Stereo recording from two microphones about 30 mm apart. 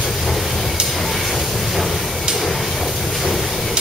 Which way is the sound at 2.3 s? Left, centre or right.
Centre.